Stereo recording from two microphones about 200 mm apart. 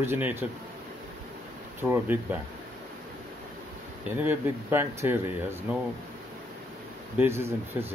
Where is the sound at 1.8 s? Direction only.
10° right (ahead or behind).